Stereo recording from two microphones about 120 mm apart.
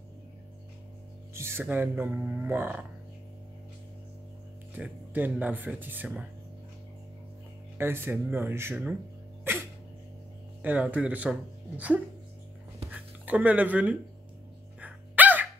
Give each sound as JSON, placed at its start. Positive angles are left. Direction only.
{"t": 1.3, "sound": "speech", "side_deg": -20}
{"t": 4.7, "sound": "speech", "side_deg": -15}
{"t": 7.7, "sound": "speech", "side_deg": -20}
{"t": 9.5, "sound": "dog", "side_deg": -20}
{"t": 10.6, "sound": "speech", "side_deg": -15}
{"t": 14.8, "sound": "dog", "side_deg": -10}